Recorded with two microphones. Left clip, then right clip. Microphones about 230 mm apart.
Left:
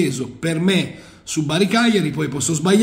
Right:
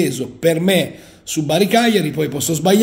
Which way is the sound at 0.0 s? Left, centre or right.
Centre.